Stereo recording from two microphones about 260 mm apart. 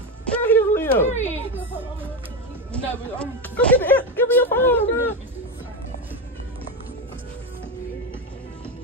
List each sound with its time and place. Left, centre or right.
0.2 s a sound: centre
1.0 s speech: left
2.7 s speech: centre